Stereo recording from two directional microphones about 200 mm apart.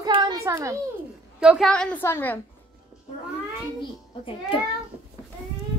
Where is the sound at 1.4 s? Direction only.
Centre (ahead or behind).